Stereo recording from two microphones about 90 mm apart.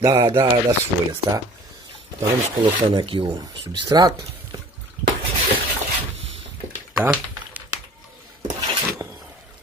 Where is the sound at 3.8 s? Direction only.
50° right (ahead or behind).